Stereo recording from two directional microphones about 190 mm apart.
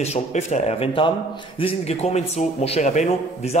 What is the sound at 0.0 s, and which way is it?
Speech, 35° left (ahead or behind).